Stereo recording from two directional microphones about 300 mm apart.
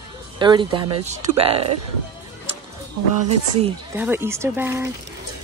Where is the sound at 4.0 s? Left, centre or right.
Centre.